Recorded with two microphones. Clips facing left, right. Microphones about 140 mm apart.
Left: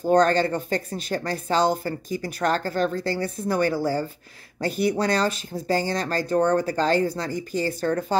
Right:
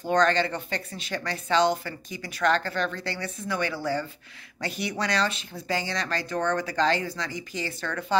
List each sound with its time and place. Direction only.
0.0 s speech: 40° left (ahead or behind)